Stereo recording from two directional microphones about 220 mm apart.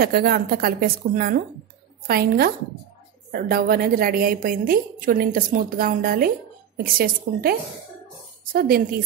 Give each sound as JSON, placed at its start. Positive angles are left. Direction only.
{"t": 0.0, "sound": "a woman's voice", "side_deg": -45}
{"t": 8.5, "sound": "a woman's voice", "side_deg": -40}